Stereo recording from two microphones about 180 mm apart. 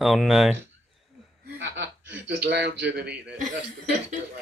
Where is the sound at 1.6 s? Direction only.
75° right (ahead or behind).